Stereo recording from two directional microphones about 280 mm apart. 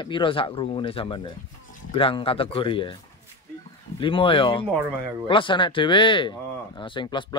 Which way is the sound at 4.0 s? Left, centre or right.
Centre.